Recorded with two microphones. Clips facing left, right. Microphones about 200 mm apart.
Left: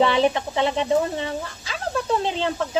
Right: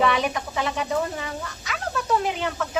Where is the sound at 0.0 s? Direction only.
30° left (ahead or behind).